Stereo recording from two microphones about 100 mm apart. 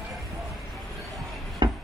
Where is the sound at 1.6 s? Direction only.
45° right (ahead or behind).